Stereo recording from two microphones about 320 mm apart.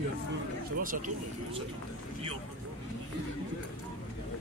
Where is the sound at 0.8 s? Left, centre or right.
Right.